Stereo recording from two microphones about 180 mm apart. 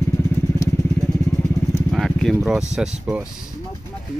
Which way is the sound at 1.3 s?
15° left (ahead or behind).